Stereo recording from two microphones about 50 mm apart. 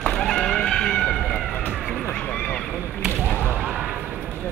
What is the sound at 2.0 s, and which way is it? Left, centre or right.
Run, centre.